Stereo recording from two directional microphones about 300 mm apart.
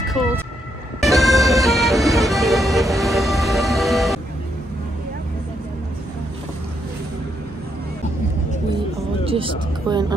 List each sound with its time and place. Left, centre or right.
0.2 s vehicle: centre
1.0 s music: centre
9.2 s speech: centre